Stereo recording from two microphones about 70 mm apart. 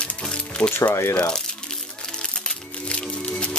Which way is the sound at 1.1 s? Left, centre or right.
Centre.